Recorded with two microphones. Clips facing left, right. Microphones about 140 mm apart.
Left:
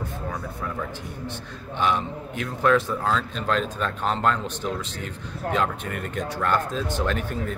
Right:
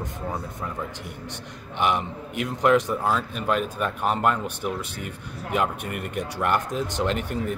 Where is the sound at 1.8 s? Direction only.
15° right (ahead or behind).